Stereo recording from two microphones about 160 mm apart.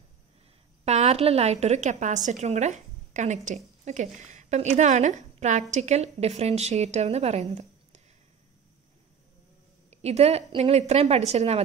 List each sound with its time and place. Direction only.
0.8 s a woman's voice: 45° right (ahead or behind)
9.8 s a woman's voice: 40° right (ahead or behind)